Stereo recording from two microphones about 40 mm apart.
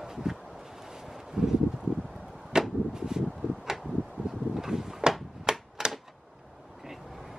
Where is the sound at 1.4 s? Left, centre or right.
Centre.